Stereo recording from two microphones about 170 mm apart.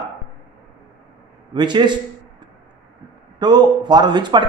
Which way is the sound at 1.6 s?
25° right (ahead or behind).